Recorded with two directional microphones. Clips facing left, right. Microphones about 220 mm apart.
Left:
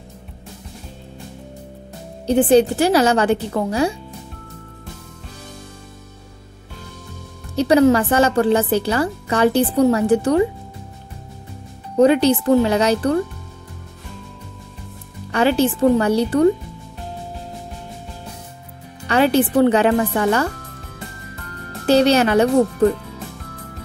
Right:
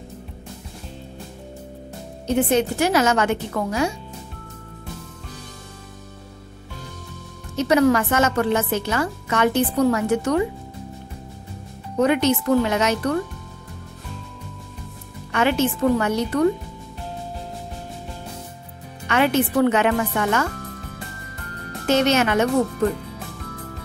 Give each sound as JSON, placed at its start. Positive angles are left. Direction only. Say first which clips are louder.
{"t": 2.2, "sound": "a woman's voice", "louder": "left 6 dB", "side_deg": 35}
{"t": 7.5, "sound": "a woman's voice", "louder": "left 4 dB", "side_deg": 30}
{"t": 12.0, "sound": "a woman's voice", "louder": "left 5 dB", "side_deg": 30}
{"t": 15.3, "sound": "a woman's voice", "louder": "left 4 dB", "side_deg": 35}
{"t": 19.0, "sound": "a woman's voice", "louder": "left 4 dB", "side_deg": 35}
{"t": 21.8, "sound": "a woman's voice", "louder": "left 4 dB", "side_deg": 35}